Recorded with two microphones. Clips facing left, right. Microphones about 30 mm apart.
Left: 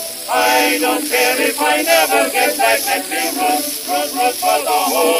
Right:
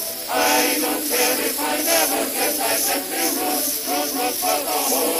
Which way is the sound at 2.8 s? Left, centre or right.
Left.